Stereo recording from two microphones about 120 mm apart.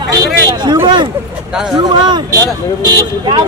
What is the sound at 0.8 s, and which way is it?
Speech, 40° right (ahead or behind).